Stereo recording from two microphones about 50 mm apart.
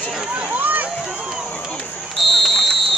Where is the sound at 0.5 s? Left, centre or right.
Right.